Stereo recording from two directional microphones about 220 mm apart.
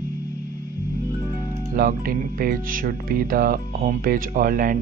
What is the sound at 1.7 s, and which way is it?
Speech, 40° right (ahead or behind).